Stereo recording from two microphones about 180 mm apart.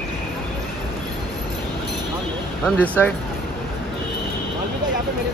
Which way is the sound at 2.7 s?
10° left (ahead or behind).